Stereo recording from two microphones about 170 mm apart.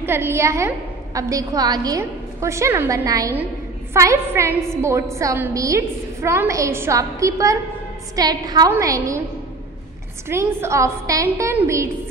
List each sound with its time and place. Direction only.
0.0 s a woman's voice: 15° right (ahead or behind)
10.2 s a woman's voice: 15° right (ahead or behind)